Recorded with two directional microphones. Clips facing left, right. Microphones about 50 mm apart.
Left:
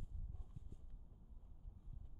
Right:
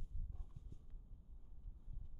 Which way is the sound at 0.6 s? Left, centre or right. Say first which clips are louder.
Left 4 dB; centre.